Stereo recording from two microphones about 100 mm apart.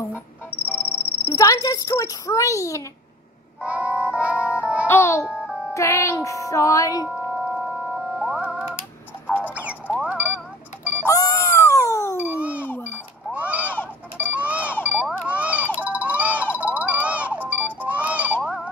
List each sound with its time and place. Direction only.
0.5 s music: 15° right (ahead or behind)
1.2 s a child's voice: 35° left (ahead or behind)
3.6 s music: 15° right (ahead or behind)
4.8 s a child's voice: 25° left (ahead or behind)
5.2 s music: 5° right (ahead or behind)
5.8 s a child's voice: 30° left (ahead or behind)
7.1 s music: 5° right (ahead or behind)
9.5 s rodents: 15° right (ahead or behind)
10.0 s a sound: 15° right (ahead or behind)
11.1 s cat: 30° left (ahead or behind)
12.2 s a sound: 15° right (ahead or behind)
16.5 s music: 15° right (ahead or behind)
18.4 s a sound: 5° right (ahead or behind)